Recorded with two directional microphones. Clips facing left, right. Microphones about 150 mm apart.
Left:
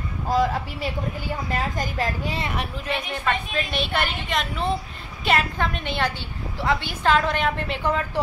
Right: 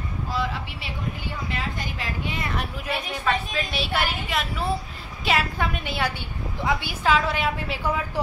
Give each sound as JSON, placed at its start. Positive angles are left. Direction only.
{"t": 0.3, "sound": "a woman's voice", "side_deg": 45}
{"t": 2.9, "sound": "a woman's voice", "side_deg": -5}